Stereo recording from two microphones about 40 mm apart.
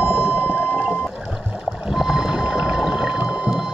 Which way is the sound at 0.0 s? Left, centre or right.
Right.